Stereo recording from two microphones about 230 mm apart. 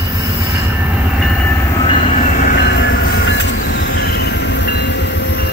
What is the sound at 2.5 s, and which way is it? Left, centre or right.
Train, left.